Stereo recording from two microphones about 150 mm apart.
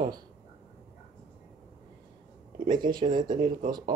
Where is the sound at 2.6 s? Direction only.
30° right (ahead or behind).